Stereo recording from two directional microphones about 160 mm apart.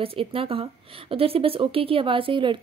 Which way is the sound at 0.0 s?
35° right (ahead or behind).